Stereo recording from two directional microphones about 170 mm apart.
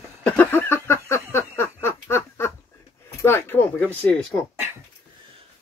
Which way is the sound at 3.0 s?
15° left (ahead or behind).